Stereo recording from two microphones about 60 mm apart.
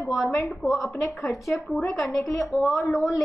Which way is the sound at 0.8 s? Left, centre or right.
Left.